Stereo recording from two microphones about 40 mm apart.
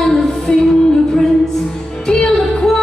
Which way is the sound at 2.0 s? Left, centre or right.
Centre.